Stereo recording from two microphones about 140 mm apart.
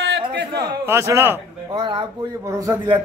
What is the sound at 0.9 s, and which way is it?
Speech, 20° right (ahead or behind).